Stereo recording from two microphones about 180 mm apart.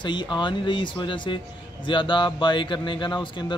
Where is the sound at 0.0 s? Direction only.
25° left (ahead or behind).